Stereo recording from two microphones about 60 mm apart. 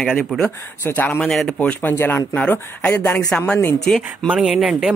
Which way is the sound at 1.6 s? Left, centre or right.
Left.